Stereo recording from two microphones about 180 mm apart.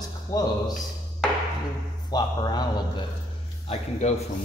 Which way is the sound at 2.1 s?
25° left (ahead or behind).